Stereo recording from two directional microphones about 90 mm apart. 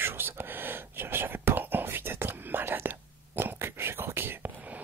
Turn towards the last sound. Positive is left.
turn(degrees=-25)  # may be behind; listen again after turning